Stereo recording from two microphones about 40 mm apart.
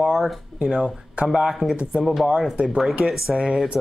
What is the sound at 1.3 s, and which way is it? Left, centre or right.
Speech, centre.